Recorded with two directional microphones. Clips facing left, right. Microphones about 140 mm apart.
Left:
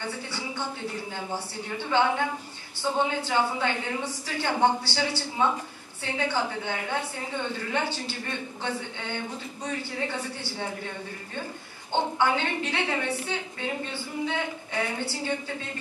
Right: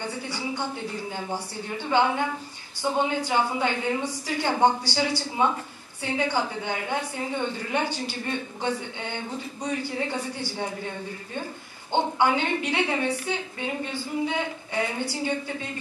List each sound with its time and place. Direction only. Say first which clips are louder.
0.3 s a woman's voice: right 3 dB; 15° right (ahead or behind)
1.9 s a woman's voice: right 1 dB; 15° right (ahead or behind)
11.9 s a woman's voice: right 2 dB; 15° right (ahead or behind)